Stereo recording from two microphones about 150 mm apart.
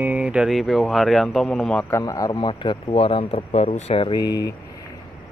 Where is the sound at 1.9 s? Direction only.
25° left (ahead or behind).